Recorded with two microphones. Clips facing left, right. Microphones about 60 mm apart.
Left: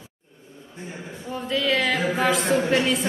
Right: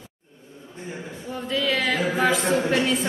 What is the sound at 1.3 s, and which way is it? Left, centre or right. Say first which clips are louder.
Speech: left 1 dB; centre.